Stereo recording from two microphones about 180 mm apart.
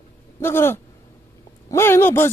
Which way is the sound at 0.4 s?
15° left (ahead or behind).